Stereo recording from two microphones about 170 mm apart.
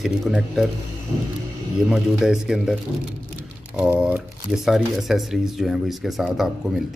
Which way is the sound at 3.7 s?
5° right (ahead or behind).